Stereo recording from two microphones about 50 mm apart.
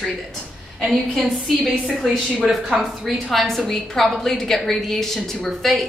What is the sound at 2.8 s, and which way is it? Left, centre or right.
A woman's voice, centre.